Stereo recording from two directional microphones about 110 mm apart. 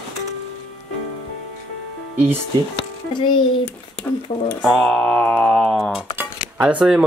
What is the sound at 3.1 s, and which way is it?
Speech, 45° left (ahead or behind).